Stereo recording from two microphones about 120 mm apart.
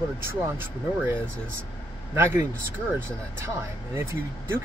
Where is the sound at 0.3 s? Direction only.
20° right (ahead or behind).